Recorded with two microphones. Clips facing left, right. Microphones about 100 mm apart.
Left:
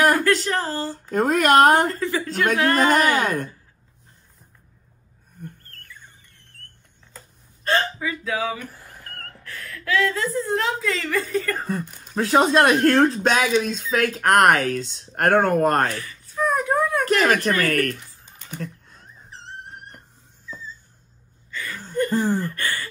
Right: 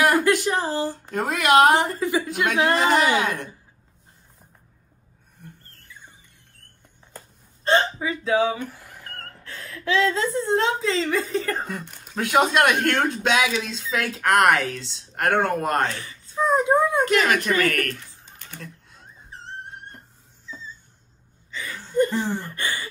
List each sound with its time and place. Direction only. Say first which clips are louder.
0.1 s speech: even; 15° right (ahead or behind)
1.1 s speech: left 2 dB; 45° left (ahead or behind)
1.9 s speech: right 1 dB; 15° right (ahead or behind)
3.2 s speech: left 2 dB; 45° left (ahead or behind)
5.9 s music: right 2 dB; 15° right (ahead or behind)
7.6 s speech: right 2 dB; 20° right (ahead or behind)
11.8 s speech: left 6 dB; centre (ahead or behind)
12.2 s speech: left 2 dB; 35° left (ahead or behind)
15.9 s a sound: left 2 dB; 25° right (ahead or behind)
17.0 s speech: left 1 dB; 40° left (ahead or behind)
18.6 s a sound: left 10 dB; 45° left (ahead or behind)
21.5 s a sound: left 1 dB; 20° right (ahead or behind)
21.9 s speech: left 1 dB; 20° right (ahead or behind)